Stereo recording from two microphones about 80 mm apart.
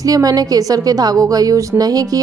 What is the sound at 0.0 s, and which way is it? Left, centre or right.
A woman's voice, right.